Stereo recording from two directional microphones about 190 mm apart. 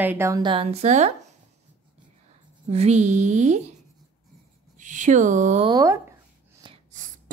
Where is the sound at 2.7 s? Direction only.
35° right (ahead or behind).